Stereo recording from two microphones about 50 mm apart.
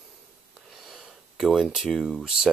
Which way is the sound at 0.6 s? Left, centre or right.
Centre.